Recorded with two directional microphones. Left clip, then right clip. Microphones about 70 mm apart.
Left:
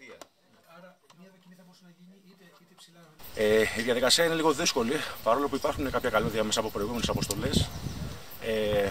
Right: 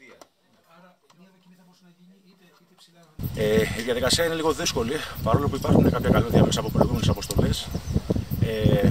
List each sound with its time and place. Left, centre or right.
3.3 s speech: centre